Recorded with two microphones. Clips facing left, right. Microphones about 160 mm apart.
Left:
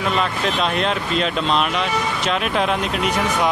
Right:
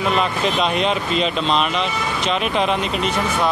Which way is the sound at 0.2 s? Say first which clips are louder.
Right 1 dB; centre (ahead or behind).